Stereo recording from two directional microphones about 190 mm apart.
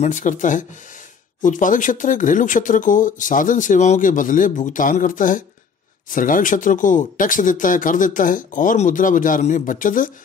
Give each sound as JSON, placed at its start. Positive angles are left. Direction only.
{"t": 0.0, "sound": "speech", "side_deg": 40}